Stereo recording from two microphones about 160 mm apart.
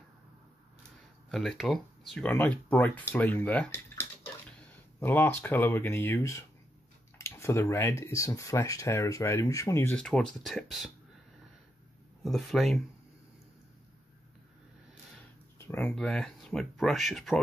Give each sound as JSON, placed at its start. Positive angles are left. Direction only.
{"t": 1.3, "sound": "speech", "side_deg": 0}
{"t": 7.2, "sound": "a sound", "side_deg": 20}
{"t": 8.0, "sound": "speech", "side_deg": 20}
{"t": 9.9, "sound": "speech", "side_deg": 5}
{"t": 12.2, "sound": "speech", "side_deg": 0}
{"t": 15.6, "sound": "speech", "side_deg": 10}